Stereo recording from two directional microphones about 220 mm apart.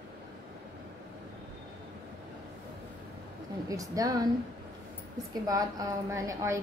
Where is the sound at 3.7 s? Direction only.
15° right (ahead or behind).